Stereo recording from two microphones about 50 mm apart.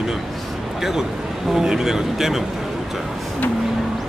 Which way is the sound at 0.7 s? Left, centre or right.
Centre.